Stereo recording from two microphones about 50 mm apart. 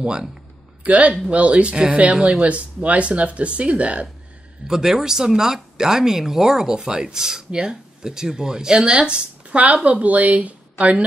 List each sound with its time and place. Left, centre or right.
0.0 s speech: centre
0.8 s a man's voice: right
2.1 s speech: centre
2.4 s speech: right
4.6 s speech: centre; by 11.1 s right